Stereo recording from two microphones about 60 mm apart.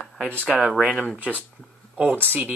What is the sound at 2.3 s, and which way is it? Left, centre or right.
Speech, right.